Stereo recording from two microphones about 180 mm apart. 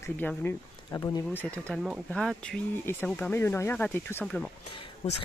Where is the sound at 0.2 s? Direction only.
10° left (ahead or behind).